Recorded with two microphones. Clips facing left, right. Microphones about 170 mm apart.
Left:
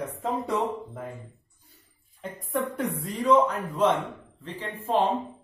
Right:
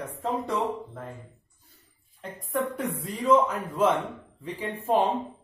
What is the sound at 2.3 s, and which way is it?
A woman's voice, centre (ahead or behind).